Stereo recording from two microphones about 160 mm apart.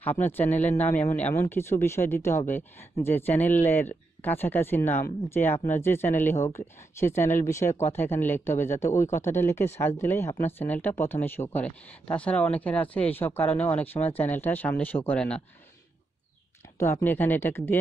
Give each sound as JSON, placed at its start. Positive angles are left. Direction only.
{"t": 0.0, "sound": "speech", "side_deg": 10}
{"t": 16.7, "sound": "speech", "side_deg": 15}